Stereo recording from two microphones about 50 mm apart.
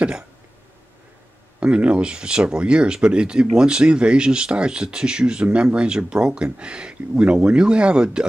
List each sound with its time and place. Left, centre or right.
1.6 s speech: right